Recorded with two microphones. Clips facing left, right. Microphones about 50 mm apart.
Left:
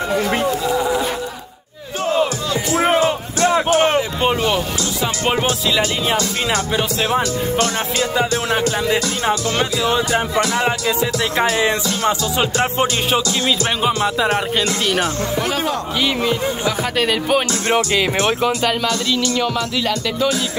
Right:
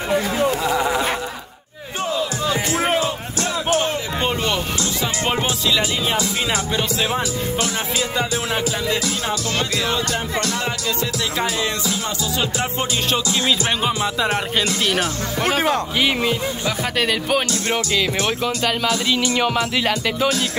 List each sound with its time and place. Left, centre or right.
0.5 s chatter: right
3.0 s music: left
3.7 s a sound: left
4.2 s music: centre
5.8 s speech: centre
6.7 s music: centre
9.6 s music: centre
13.8 s music: centre
17.0 s music: centre
17.6 s speech: left
19.0 s speech: right